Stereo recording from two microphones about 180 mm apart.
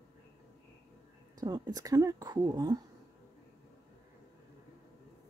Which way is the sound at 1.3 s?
20° right (ahead or behind).